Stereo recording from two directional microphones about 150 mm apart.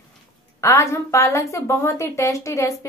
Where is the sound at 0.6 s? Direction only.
20° left (ahead or behind).